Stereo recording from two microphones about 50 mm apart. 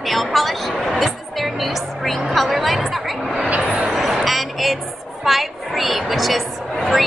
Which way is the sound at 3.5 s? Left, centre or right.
Right.